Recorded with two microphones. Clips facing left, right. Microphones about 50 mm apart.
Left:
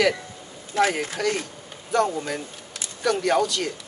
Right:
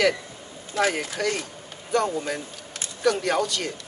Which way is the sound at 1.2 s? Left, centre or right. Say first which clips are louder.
Left 1 dB; centre.